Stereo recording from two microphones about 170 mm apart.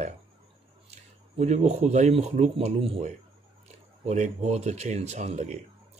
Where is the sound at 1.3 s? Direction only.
40° right (ahead or behind).